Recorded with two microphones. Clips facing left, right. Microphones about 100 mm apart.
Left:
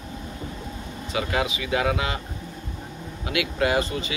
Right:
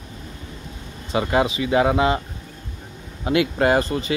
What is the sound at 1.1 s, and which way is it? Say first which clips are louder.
Speech: right 6 dB; 30° right (ahead or behind).